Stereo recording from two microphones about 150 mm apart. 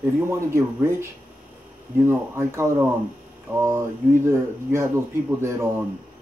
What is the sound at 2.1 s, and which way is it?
Speech, 15° right (ahead or behind).